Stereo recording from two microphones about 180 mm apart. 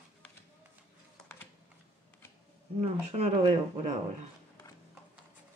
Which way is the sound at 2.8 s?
35° right (ahead or behind).